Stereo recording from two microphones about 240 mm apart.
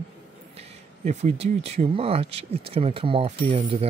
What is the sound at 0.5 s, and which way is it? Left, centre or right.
Speech, right.